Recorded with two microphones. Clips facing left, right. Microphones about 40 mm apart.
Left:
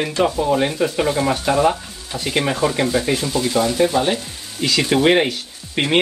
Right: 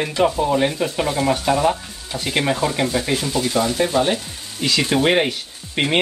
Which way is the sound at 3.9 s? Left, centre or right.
Right.